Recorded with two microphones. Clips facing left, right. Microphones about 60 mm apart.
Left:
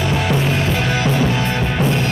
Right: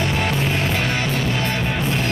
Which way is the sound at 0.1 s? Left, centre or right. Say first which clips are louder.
Left 3 dB; centre.